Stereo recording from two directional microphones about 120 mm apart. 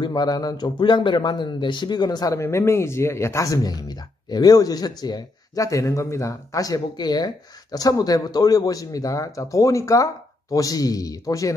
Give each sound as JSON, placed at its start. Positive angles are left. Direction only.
{"t": 0.0, "sound": "speech", "side_deg": 35}
{"t": 2.4, "sound": "speech", "side_deg": 20}